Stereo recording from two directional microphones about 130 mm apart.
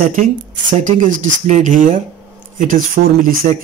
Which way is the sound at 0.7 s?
70° right (ahead or behind).